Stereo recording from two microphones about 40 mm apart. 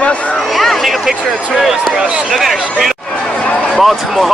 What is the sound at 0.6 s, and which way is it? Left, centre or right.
Speech, centre.